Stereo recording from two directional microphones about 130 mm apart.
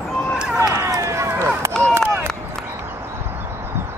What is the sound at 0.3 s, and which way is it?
Run, 5° right (ahead or behind).